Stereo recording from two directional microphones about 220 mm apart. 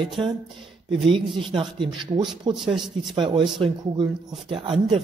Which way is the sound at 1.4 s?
20° right (ahead or behind).